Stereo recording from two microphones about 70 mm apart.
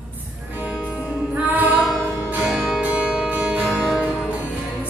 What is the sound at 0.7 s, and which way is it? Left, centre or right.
Music, centre.